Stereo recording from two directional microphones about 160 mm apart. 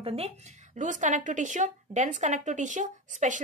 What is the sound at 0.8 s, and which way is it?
A woman's voice, 50° right (ahead or behind).